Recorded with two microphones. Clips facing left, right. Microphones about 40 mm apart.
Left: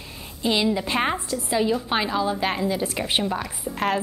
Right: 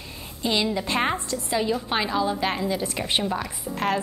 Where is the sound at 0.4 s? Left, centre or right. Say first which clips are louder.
Left 2 dB; centre.